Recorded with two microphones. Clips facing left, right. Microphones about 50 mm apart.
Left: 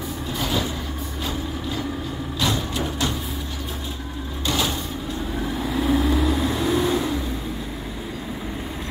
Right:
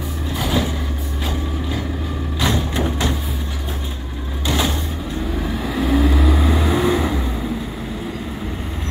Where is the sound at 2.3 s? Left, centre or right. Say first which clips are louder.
Right 4 dB; right.